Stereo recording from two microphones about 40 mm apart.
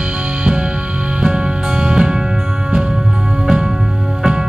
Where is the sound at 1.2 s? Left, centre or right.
Right.